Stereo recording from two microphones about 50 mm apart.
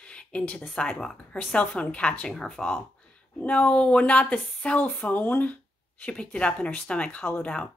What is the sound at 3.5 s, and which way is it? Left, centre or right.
Speech, left.